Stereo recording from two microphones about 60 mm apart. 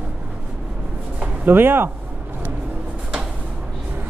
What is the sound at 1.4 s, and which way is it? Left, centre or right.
Speech, right.